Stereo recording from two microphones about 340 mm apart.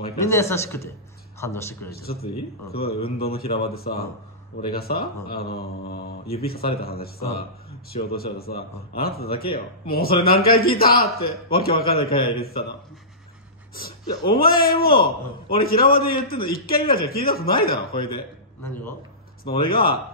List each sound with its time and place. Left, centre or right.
0.0 s speech: centre
1.9 s a man's voice: left
14.2 s a man's voice: left
17.9 s a man's voice: centre
19.4 s a man's voice: left